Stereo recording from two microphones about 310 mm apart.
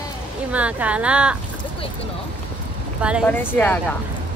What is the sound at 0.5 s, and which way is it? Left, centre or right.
Speech, centre.